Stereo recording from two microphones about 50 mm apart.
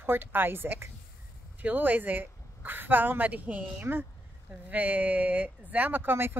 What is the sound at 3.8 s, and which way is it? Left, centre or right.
Speech, right.